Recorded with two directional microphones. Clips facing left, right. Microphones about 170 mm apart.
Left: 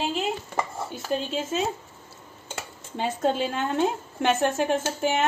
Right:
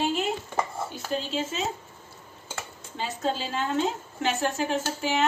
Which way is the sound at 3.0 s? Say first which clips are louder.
Left 5 dB; 55° left (ahead or behind).